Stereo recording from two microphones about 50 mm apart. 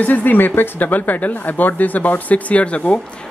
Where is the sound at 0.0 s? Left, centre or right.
Left.